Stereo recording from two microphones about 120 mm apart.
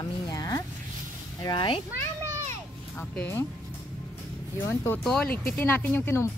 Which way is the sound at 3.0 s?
15° left (ahead or behind).